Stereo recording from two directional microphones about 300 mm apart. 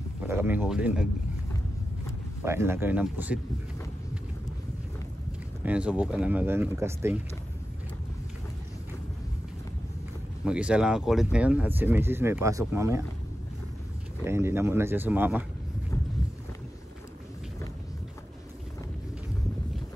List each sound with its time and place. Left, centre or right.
0.3 s speech: centre
2.4 s speech: centre
5.6 s speech: centre
10.4 s speech: centre
14.2 s speech: centre